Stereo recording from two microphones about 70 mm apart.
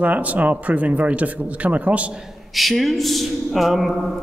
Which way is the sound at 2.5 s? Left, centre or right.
Centre.